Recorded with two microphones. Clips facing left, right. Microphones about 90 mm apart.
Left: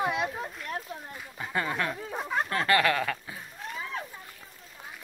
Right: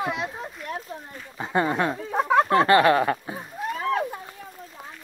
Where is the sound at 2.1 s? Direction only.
80° right.